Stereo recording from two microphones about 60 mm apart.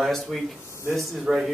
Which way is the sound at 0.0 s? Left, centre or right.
Centre.